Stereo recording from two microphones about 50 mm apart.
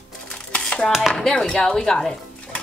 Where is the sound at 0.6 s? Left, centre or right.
Centre.